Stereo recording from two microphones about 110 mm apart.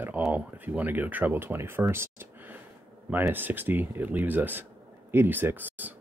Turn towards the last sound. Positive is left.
turn(degrees=-15)  # may be behind; listen again after turning